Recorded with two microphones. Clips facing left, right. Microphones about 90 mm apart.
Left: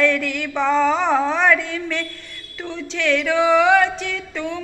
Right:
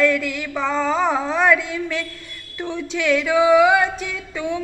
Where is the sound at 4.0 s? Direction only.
10° right (ahead or behind).